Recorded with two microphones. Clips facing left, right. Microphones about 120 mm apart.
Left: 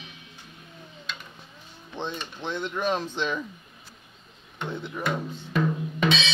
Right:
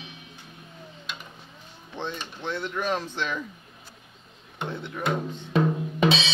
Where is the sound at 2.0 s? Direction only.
20° left (ahead or behind).